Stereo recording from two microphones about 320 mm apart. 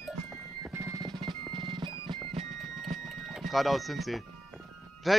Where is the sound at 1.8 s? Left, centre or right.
Centre.